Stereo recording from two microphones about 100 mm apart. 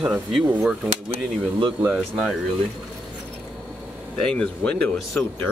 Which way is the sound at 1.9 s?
5° right (ahead or behind).